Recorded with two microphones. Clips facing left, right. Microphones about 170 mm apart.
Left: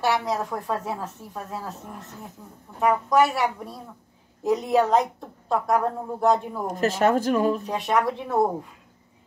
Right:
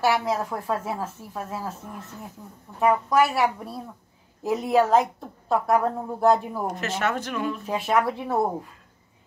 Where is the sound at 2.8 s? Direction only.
Centre (ahead or behind).